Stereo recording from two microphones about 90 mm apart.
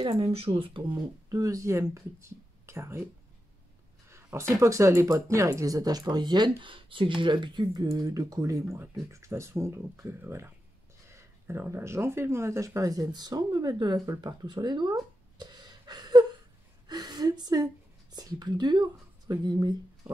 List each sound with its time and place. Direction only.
0.0 s speech: 70° right (ahead or behind); by 0.8 s 85° right
0.9 s speech: 40° right (ahead or behind)
4.1 s speech: 30° right (ahead or behind); by 15.7 s 55° right (ahead or behind)
15.9 s whimper: 55° right (ahead or behind)
16.8 s a sound: 50° right (ahead or behind)
18.1 s speech: 50° right (ahead or behind)